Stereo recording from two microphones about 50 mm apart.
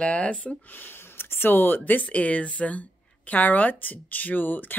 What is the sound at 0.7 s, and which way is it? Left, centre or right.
Speech, left.